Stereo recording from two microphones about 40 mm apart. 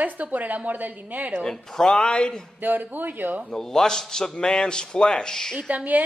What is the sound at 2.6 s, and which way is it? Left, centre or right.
Speech, right.